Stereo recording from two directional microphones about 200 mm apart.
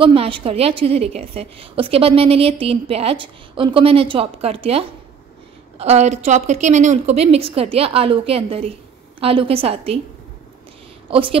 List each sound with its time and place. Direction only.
0.0 s a woman's voice: 25° right (ahead or behind)
11.1 s speech: 25° right (ahead or behind)